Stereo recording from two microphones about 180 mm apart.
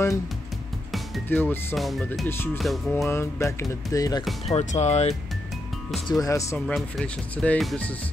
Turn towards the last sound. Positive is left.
turn(degrees=5)  # may be behind; listen again after turning